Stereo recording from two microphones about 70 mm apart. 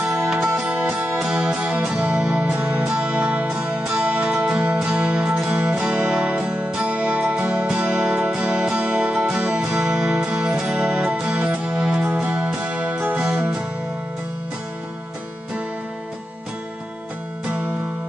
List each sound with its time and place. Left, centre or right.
0.3 s music: centre
3.5 s music: centre